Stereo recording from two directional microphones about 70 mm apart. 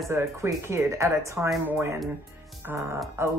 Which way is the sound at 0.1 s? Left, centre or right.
Right.